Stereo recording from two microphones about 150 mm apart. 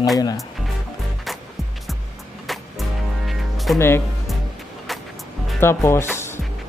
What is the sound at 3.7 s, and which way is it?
Speech, 15° left (ahead or behind).